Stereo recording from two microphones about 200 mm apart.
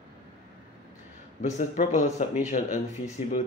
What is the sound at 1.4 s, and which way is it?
Speech, 40° left (ahead or behind).